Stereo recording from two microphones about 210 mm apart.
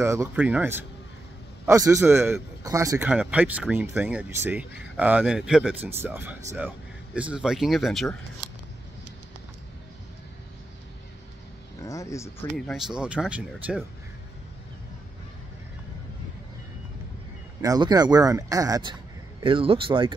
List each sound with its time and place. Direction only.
0.0 s a man's voice: 15° right (ahead or behind)
11.8 s speech: 15° left (ahead or behind)
12.5 s speech: centre (ahead or behind)
17.6 s a man's voice: 20° right (ahead or behind)